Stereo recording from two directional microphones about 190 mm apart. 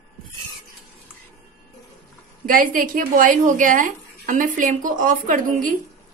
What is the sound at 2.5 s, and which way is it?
Speech, 45° right (ahead or behind).